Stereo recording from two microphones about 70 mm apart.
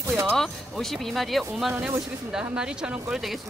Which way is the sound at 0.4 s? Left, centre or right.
Centre.